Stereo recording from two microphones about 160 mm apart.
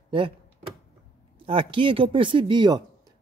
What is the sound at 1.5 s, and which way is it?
Speech, 35° right (ahead or behind).